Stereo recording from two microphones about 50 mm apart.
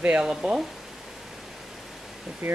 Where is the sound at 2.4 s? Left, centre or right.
Right.